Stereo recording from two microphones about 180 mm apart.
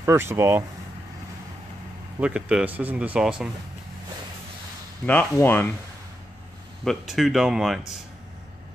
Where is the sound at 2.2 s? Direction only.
5° right (ahead or behind).